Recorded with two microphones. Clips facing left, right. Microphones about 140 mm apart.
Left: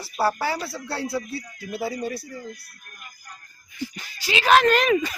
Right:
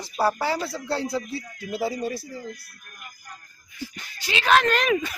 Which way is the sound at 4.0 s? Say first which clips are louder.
Left 3 dB; 5° left (ahead or behind).